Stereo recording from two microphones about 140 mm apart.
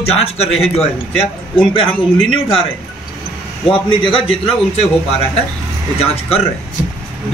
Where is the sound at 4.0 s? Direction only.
40° left (ahead or behind).